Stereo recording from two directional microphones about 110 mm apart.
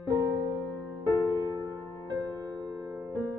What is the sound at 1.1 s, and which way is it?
Music, 35° right (ahead or behind).